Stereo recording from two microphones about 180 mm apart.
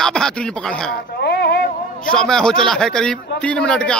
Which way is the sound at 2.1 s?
5° left (ahead or behind).